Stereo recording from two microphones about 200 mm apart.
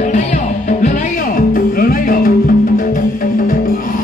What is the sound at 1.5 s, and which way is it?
Music, 45° left (ahead or behind).